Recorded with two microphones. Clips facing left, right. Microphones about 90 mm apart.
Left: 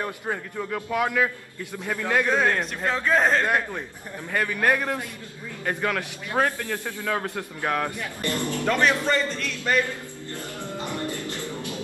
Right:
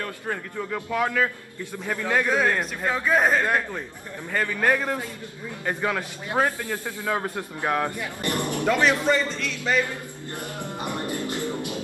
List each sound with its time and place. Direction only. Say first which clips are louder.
0.8 s a man's voice: even; 10° left (ahead or behind); by 3.4 s 5° right (ahead or behind)
3.4 s a man's voice: even; 5° left (ahead or behind)
5.7 s speech: even; 10° right (ahead or behind)
10.3 s music: right 1 dB; 20° right (ahead or behind)